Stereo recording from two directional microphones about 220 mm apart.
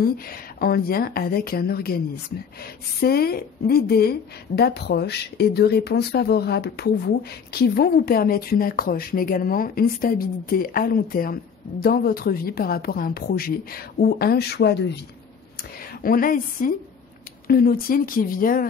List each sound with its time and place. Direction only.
0.0 s a woman's voice: 45° left (ahead or behind)
16.0 s a woman's voice: 40° left (ahead or behind)